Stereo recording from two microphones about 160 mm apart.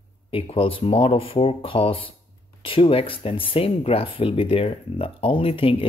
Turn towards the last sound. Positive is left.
turn(degrees=35)  # may be behind; listen again after turning